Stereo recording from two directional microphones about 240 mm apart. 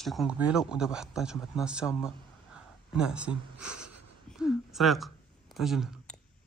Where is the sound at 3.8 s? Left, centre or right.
Right.